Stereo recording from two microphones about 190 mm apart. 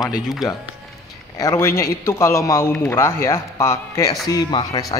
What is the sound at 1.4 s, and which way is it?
A man's voice, 15° left (ahead or behind).